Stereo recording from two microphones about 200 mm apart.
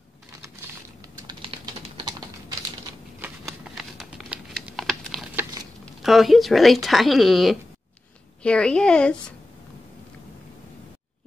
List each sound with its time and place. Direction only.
1.5 s typing: 30° right (ahead or behind)
3.7 s patter: centre (ahead or behind)
5.3 s a sound: 10° right (ahead or behind)
6.0 s speech: centre (ahead or behind)